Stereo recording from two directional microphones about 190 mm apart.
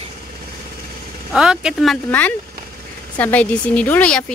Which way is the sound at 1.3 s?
5° right (ahead or behind).